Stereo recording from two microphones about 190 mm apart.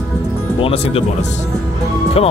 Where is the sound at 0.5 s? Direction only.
30° left (ahead or behind).